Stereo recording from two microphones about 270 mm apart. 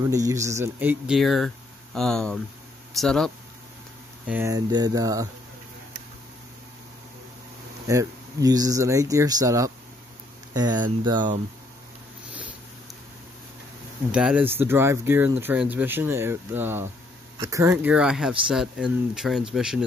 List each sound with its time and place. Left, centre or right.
0.1 s speech: centre
4.3 s speech: centre
7.9 s speech: centre
14.1 s speech: centre